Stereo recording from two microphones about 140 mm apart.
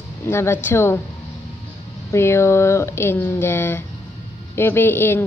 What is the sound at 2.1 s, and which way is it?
A woman's voice, 20° left (ahead or behind).